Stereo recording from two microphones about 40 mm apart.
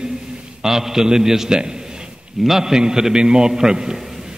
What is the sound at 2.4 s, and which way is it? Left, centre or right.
A man's voice, centre.